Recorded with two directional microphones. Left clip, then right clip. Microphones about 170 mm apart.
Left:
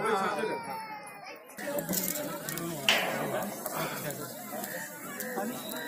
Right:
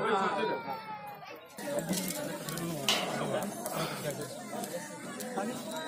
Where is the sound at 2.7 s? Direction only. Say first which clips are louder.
Left 4 dB; 90° right.